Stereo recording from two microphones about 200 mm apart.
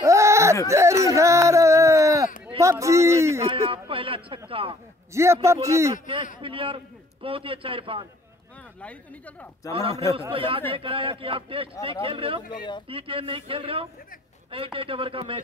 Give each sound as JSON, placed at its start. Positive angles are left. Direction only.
{"t": 0.0, "sound": "a sound", "side_deg": -15}
{"t": 2.6, "sound": "speech", "side_deg": -15}
{"t": 3.4, "sound": "a man's voice", "side_deg": -30}
{"t": 5.1, "sound": "speech", "side_deg": -15}
{"t": 6.4, "sound": "a man's voice", "side_deg": -25}
{"t": 8.8, "sound": "a woman's voice", "side_deg": 10}
{"t": 10.3, "sound": "a man's voice", "side_deg": -25}